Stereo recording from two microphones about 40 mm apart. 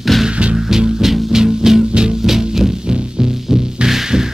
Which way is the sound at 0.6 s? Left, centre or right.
Centre.